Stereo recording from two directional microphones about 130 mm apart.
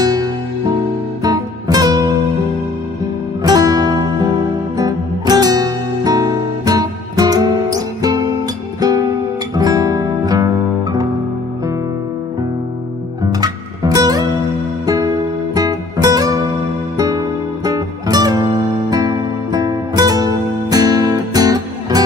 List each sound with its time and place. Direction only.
0.0 s music: 30° right (ahead or behind)
3.4 s music: 30° right (ahead or behind)
13.3 s music: 30° right (ahead or behind)
15.5 s music: 30° right (ahead or behind)